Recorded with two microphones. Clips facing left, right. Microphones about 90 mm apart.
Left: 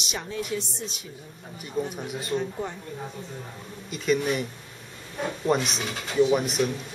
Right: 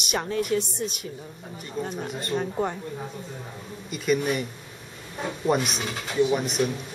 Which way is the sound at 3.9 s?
5° right (ahead or behind).